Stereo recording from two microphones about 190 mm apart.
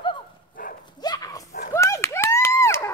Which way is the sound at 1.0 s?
20° left (ahead or behind).